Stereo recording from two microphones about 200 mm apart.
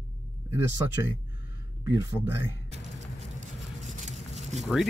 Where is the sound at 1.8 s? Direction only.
15° right (ahead or behind).